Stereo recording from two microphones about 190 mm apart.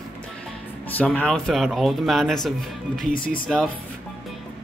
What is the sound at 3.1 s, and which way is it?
Speech, 45° left (ahead or behind).